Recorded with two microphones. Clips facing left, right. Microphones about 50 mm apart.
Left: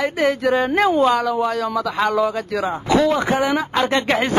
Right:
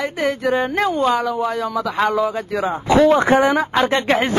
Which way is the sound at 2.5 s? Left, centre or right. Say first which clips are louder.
Right 2 dB; centre.